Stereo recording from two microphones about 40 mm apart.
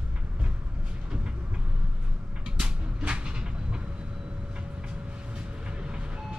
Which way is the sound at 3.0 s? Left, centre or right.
Right.